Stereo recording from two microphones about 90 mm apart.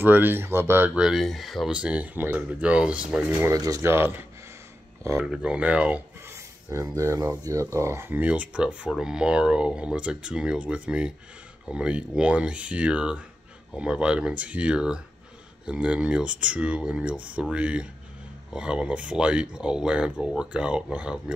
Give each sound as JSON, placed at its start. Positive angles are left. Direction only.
{"t": 0.0, "sound": "speech", "side_deg": -20}
{"t": 0.9, "sound": "speech", "side_deg": -5}
{"t": 1.7, "sound": "speech", "side_deg": -15}
{"t": 3.5, "sound": "speech", "side_deg": -40}
{"t": 3.9, "sound": "speech", "side_deg": -25}
{"t": 5.1, "sound": "speech", "side_deg": -10}
{"t": 7.0, "sound": "speech", "side_deg": -30}
{"t": 8.2, "sound": "speech", "side_deg": -15}